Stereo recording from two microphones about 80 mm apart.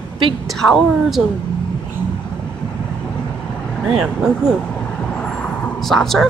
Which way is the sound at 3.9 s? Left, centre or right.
Centre.